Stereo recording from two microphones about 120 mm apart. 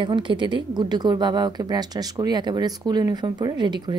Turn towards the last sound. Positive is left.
turn(degrees=-40)  # may be behind; listen again after turning